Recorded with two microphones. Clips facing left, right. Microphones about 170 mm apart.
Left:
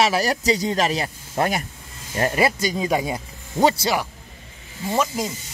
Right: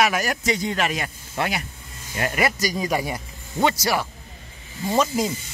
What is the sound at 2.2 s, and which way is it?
Speech, 30° left (ahead or behind).